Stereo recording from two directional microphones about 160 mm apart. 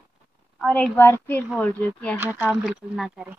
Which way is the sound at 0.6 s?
5° left (ahead or behind).